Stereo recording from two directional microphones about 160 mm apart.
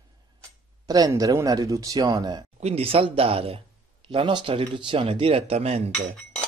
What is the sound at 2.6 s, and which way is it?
Speech, 40° right (ahead or behind).